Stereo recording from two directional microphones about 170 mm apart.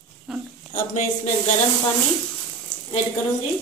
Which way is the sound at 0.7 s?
45° left (ahead or behind).